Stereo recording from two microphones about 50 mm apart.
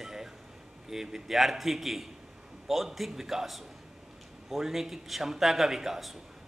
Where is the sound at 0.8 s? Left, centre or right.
Centre.